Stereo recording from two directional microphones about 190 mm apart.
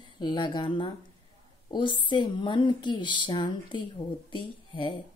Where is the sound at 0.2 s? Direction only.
25° left (ahead or behind).